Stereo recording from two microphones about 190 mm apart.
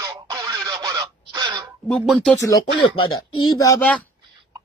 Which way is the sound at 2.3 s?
15° left (ahead or behind).